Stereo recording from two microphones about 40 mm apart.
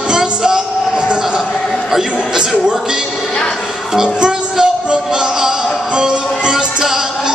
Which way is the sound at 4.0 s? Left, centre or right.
Right.